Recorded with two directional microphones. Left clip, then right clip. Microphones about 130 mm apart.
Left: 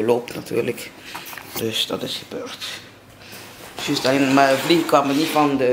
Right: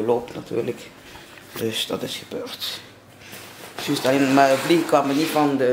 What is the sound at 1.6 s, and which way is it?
Speech, 5° right (ahead or behind).